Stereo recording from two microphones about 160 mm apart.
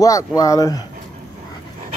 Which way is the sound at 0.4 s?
20° left (ahead or behind).